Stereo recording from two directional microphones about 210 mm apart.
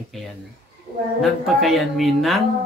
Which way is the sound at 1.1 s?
Centre (ahead or behind).